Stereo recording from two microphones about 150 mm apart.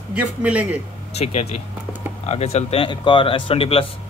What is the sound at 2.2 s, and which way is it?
Speech, 45° left (ahead or behind).